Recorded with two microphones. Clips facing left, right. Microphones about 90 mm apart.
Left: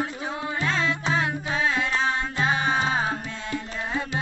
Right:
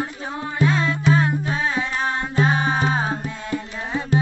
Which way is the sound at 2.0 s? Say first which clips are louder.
Right 3 dB; 15° right (ahead or behind).